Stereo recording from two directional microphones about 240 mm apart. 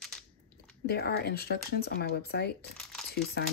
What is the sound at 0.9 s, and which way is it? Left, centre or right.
Speech, left.